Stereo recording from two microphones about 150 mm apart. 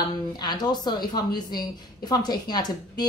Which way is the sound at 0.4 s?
25° left (ahead or behind).